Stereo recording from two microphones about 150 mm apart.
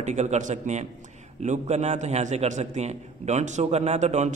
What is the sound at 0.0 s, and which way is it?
A man's voice, 50° right (ahead or behind).